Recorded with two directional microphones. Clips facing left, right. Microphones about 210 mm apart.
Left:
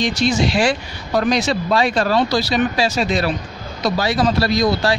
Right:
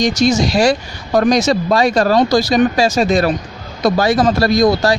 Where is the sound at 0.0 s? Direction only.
45° right (ahead or behind).